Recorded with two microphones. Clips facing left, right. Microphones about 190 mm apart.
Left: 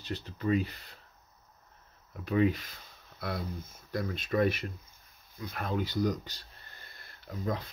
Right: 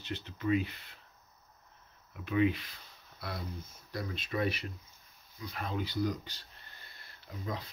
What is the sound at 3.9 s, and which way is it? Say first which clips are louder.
Speech: left 5 dB; 50° left (ahead or behind).